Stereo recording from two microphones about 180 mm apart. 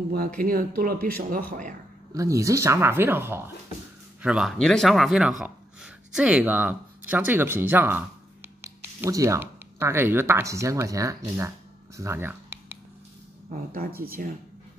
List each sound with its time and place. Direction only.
0.4 s speech: 55° right (ahead or behind)
2.1 s speech: 20° right (ahead or behind)
12.0 s a sound: 15° right (ahead or behind)
13.5 s speech: 55° right (ahead or behind)